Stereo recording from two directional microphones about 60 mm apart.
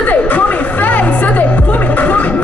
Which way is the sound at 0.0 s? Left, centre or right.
Left.